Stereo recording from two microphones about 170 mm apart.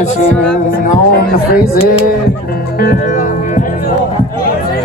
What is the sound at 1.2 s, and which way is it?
Speech, 60° left (ahead or behind).